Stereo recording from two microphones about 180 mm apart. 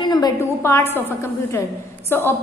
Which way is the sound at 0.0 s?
20° left (ahead or behind).